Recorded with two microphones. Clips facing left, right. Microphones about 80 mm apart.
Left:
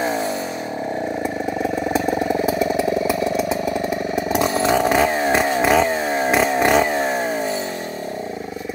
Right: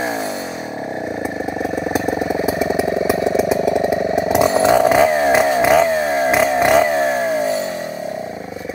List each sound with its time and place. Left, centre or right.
1.9 s chainsaw: centre
5.0 s chainsaw: centre